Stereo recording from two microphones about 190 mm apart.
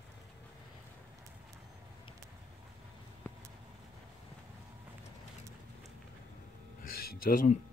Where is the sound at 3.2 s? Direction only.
10° left (ahead or behind).